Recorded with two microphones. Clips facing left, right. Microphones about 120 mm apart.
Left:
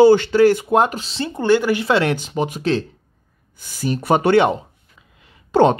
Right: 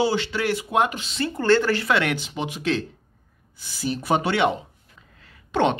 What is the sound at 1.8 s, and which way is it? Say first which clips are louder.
Speech: left 5 dB; 30° left (ahead or behind).